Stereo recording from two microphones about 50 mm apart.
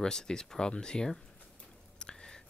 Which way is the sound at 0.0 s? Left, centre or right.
Centre.